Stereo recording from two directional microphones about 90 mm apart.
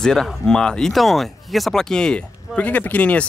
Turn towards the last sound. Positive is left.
turn(degrees=15)  # may be behind; listen again after turning